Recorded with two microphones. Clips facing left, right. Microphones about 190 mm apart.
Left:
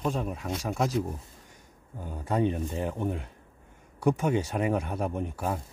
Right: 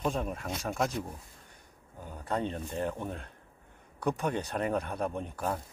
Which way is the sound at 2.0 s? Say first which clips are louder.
Left 6 dB; 10° left (ahead or behind).